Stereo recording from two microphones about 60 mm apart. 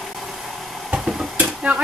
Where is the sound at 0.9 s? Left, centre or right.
Centre.